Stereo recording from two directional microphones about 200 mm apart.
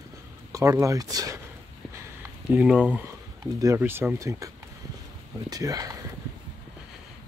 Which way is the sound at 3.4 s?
15° right (ahead or behind).